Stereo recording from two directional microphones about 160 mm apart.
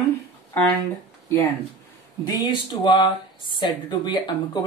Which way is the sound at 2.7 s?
30° left (ahead or behind).